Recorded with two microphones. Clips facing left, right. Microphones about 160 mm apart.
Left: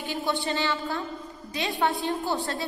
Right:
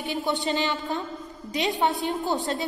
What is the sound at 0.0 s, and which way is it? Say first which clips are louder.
A woman's voice: right 2 dB; 15° right (ahead or behind).